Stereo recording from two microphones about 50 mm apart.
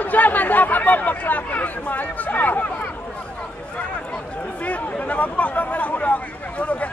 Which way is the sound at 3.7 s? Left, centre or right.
Left.